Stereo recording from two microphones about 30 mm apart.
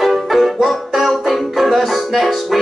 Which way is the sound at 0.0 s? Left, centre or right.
Centre.